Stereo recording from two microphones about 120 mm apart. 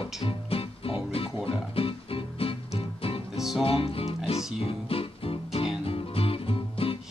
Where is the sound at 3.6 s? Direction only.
50° left (ahead or behind).